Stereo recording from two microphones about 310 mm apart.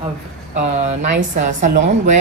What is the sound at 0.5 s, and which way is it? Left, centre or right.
Speech, right.